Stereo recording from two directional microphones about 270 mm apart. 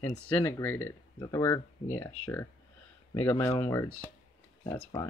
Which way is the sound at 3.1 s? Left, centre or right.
Centre.